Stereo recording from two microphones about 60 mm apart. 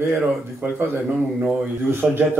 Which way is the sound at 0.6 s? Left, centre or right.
Right.